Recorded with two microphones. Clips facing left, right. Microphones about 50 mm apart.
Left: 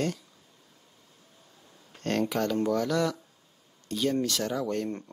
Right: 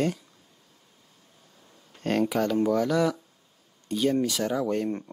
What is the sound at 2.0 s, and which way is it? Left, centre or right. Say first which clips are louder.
Speech: right 3 dB; centre.